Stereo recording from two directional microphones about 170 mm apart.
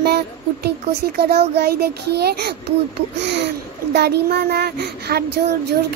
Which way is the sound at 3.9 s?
70° right (ahead or behind).